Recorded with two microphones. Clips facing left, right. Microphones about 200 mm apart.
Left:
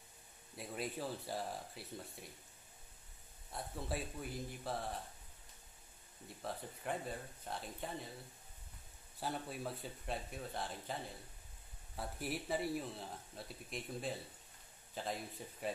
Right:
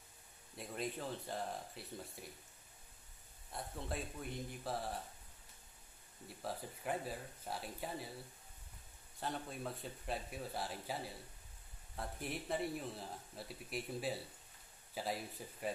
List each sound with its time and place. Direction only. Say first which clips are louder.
0.6 s a man's voice: even; 5° left (ahead or behind)
3.5 s a man's voice: left 1 dB; 5° left (ahead or behind)
6.2 s a man's voice: right 1 dB; centre (ahead or behind)
9.2 s a man's voice: left 1 dB; 5° left (ahead or behind)
12.0 s a man's voice: left 1 dB; 5° left (ahead or behind)